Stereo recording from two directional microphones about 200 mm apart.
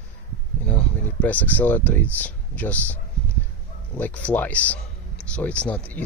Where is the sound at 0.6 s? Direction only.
5° left (ahead or behind).